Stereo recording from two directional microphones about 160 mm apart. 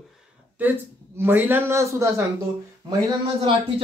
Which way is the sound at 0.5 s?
10° right (ahead or behind).